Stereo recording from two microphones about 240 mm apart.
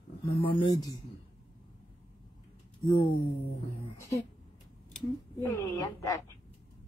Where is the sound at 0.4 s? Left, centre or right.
Left.